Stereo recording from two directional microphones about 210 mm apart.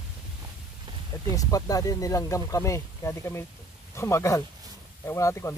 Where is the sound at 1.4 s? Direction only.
15° left (ahead or behind).